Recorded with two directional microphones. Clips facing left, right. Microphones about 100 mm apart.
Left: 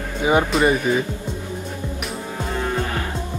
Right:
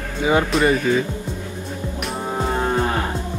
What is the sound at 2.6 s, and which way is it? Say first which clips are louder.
Moo: right 2 dB; 35° right (ahead or behind).